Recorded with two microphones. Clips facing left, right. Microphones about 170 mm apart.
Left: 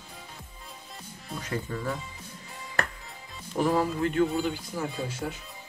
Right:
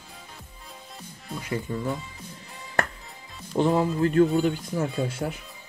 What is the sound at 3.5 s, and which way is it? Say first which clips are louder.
Speech: right 3 dB; 25° right (ahead or behind).